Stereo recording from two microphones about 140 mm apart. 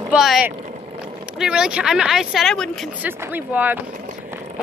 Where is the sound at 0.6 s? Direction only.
55° right (ahead or behind).